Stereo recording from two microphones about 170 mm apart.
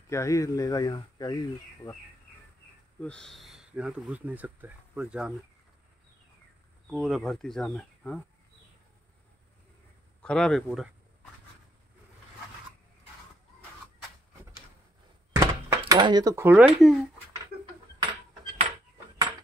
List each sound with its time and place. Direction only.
0.1 s speech: 20° left (ahead or behind)
3.0 s speech: 5° left (ahead or behind)
6.9 s speech: centre (ahead or behind)
10.2 s speech: 5° left (ahead or behind)
15.3 s a sound: 20° right (ahead or behind)
15.9 s speech: 25° right (ahead or behind); by 17.1 s 5° right (ahead or behind)